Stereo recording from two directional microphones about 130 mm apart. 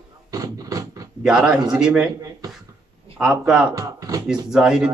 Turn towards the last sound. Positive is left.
turn(degrees=-5)  # may be behind; listen again after turning